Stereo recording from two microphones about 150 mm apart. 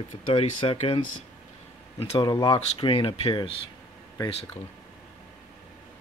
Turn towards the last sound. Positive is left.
turn(degrees=40)  # may be behind; listen again after turning